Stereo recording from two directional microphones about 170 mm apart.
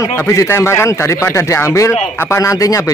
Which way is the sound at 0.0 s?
20° left (ahead or behind).